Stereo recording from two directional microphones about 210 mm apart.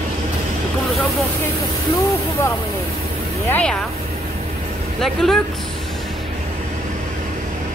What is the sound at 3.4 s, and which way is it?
Speech, 5° left (ahead or behind).